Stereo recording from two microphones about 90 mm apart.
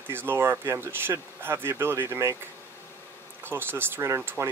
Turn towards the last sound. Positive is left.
turn(degrees=-30)  # may be behind; listen again after turning